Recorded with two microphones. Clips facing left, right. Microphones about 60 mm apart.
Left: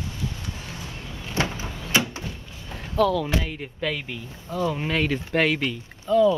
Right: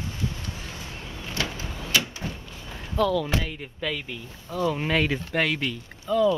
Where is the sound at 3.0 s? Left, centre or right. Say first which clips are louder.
Left 2 dB; centre.